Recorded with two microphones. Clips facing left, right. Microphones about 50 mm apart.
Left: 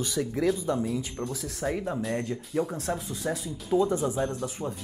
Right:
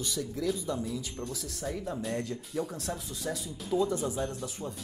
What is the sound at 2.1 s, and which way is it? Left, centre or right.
Speech, left.